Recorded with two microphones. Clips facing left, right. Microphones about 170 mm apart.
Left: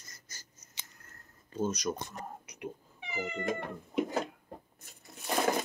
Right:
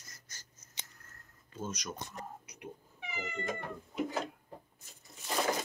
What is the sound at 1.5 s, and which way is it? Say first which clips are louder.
Speech: left 9 dB; 40° left (ahead or behind).